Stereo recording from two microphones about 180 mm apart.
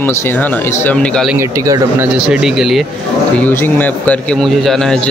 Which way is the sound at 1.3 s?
20° right (ahead or behind).